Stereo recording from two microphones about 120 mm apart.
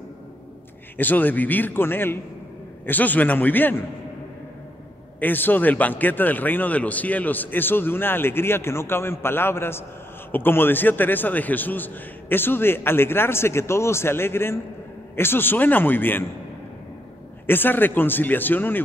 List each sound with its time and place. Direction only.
0.9 s a man's voice: 15° left (ahead or behind)
5.2 s a man's voice: 15° left (ahead or behind)
17.5 s a man's voice: 15° left (ahead or behind)